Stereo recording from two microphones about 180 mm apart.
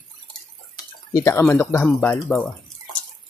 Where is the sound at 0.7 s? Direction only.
15° left (ahead or behind).